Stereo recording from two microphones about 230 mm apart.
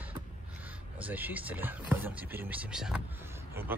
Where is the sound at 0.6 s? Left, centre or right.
Centre.